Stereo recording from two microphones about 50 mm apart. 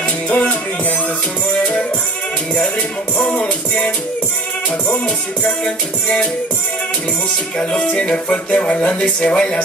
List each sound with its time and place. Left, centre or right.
0.3 s music: left
3.2 s music: left
7.5 s music: left